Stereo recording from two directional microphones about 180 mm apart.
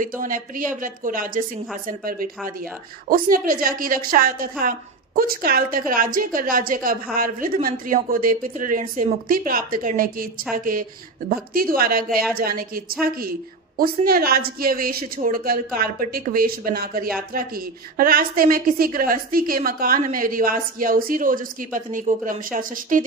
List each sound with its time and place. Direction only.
0.0 s a woman's voice: 50° right (ahead or behind)